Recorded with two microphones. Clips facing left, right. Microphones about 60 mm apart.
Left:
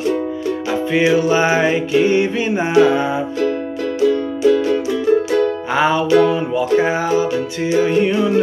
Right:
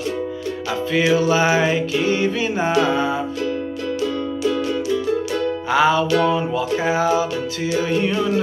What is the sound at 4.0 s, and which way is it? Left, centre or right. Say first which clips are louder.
Music: left 8 dB; left.